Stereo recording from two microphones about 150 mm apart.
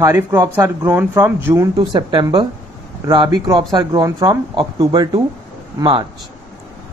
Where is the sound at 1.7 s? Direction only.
30° right (ahead or behind).